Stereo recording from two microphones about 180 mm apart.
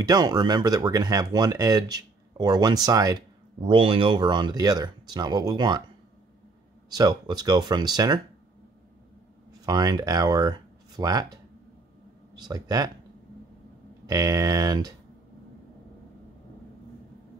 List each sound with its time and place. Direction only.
0.0 s speech: 20° right (ahead or behind)
6.9 s speech: 20° right (ahead or behind)
9.5 s speech: 20° right (ahead or behind)
12.4 s speech: 20° right (ahead or behind)
14.0 s speech: 20° right (ahead or behind)